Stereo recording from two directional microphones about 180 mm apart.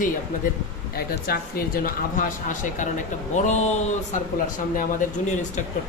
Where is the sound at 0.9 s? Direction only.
55° left (ahead or behind); by 4.2 s 40° left (ahead or behind).